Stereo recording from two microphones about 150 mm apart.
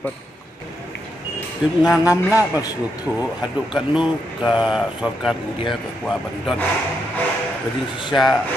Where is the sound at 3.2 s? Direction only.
5° right (ahead or behind).